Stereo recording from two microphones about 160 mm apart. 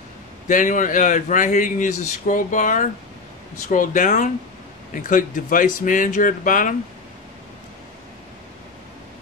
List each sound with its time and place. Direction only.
0.5 s speech: 55° left (ahead or behind)